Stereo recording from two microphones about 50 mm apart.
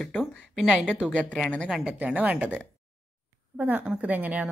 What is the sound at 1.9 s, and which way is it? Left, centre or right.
Speech, right.